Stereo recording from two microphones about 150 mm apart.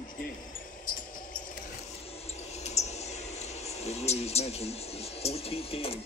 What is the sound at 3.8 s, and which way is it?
Speech, 45° left (ahead or behind).